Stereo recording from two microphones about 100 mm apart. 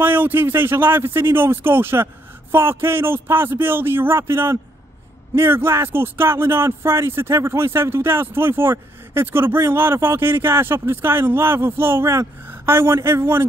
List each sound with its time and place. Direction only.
0.0 s speech: 20° right (ahead or behind)